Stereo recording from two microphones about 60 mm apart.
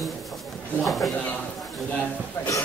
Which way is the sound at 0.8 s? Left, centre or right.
Centre.